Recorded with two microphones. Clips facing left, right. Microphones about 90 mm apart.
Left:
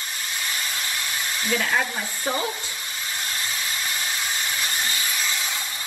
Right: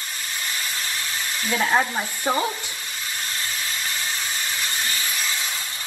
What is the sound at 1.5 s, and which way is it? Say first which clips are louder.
Speech: right 3 dB; 30° right (ahead or behind).